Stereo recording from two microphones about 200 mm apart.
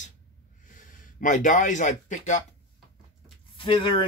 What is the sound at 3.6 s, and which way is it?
Speech, 25° left (ahead or behind).